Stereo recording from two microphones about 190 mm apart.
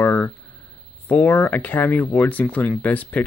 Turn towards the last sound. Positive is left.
turn(degrees=10)  # may be behind; listen again after turning